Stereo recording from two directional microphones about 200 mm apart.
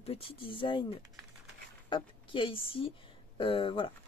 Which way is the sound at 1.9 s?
25° left (ahead or behind).